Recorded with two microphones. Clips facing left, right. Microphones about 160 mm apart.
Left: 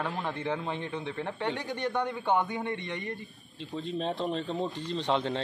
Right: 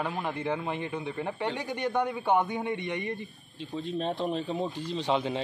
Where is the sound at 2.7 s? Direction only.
15° right (ahead or behind).